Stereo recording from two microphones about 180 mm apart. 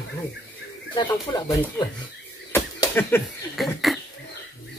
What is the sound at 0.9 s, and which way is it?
Speech, 25° left (ahead or behind).